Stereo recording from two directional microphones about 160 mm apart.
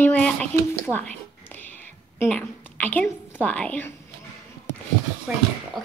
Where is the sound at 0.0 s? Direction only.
10° left (ahead or behind).